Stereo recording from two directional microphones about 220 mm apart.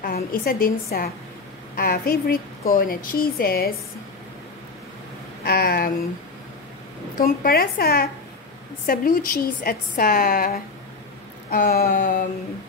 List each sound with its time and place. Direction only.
0.0 s a woman's voice: 40° left (ahead or behind)
5.4 s a woman's voice: 45° left (ahead or behind)
7.2 s a woman's voice: 45° left (ahead or behind)